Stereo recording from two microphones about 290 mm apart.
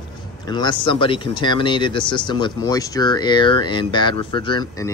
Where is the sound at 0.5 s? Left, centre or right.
Centre.